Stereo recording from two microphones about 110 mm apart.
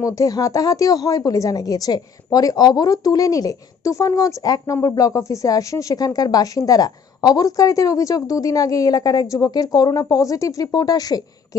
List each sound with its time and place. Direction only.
0.0 s speech: 30° left (ahead or behind)